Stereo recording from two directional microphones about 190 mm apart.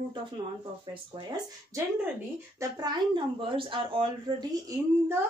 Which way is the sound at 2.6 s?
20° right (ahead or behind).